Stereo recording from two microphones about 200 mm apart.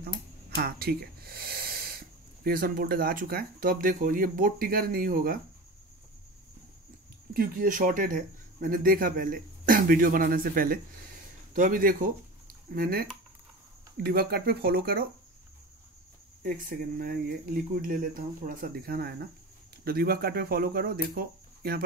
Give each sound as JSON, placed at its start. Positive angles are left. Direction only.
{"t": 0.6, "sound": "speech", "side_deg": -50}
{"t": 7.3, "sound": "speech", "side_deg": -45}
{"t": 14.0, "sound": "speech", "side_deg": -50}
{"t": 16.4, "sound": "speech", "side_deg": -45}